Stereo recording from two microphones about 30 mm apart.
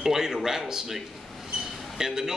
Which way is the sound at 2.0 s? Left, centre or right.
Centre.